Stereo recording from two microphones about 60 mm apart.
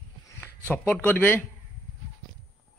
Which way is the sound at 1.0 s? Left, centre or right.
Left.